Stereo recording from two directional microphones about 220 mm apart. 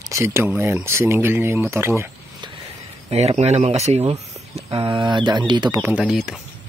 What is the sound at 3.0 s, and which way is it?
Speech, 30° right (ahead or behind).